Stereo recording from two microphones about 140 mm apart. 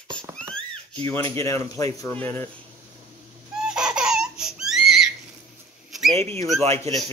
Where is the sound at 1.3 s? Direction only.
20° left (ahead or behind).